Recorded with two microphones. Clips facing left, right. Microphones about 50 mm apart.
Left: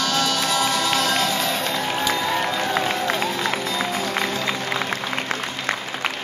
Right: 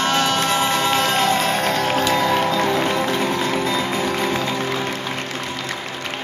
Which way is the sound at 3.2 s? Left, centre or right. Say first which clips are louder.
Right 3 dB; right.